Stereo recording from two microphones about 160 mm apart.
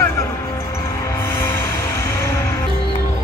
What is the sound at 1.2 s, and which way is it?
Music, 15° left (ahead or behind).